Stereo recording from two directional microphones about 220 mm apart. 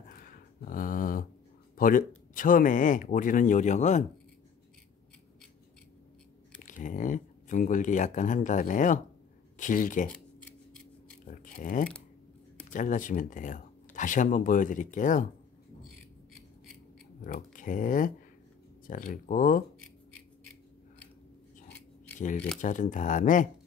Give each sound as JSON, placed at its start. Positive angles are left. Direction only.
{"t": 0.1, "sound": "a sound", "side_deg": 40}
{"t": 1.8, "sound": "speech", "side_deg": 40}
{"t": 6.6, "sound": "speech", "side_deg": 35}
{"t": 11.2, "sound": "a sound", "side_deg": 35}
{"t": 12.7, "sound": "speech", "side_deg": 35}
{"t": 17.2, "sound": "speech", "side_deg": 35}
{"t": 22.6, "sound": "speech", "side_deg": 35}